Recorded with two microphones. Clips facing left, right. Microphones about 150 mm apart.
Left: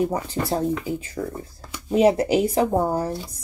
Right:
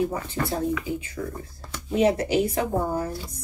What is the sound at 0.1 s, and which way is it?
Speech, 35° left (ahead or behind).